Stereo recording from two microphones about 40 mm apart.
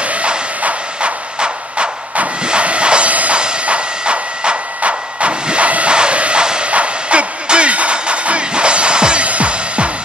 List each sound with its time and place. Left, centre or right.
0.1 s shuffle: right
2.4 s train: right
3.3 s a sound: right
6.7 s music: right